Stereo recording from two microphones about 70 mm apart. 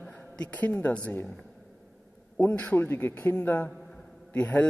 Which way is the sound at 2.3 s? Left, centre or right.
Centre.